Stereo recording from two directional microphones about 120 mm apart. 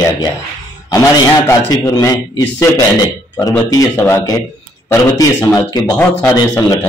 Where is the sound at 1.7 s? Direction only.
30° left (ahead or behind).